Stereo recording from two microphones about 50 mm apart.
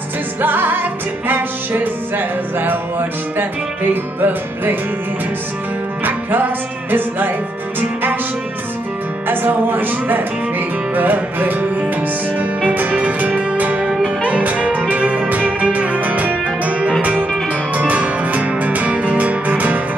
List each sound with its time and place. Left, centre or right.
0.4 s music: right
9.3 s speech: right
12.4 s music: right
13.8 s music: centre
14.3 s music: right